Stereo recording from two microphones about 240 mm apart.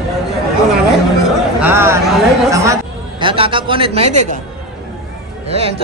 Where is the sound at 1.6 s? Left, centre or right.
Centre; by 4.4 s right.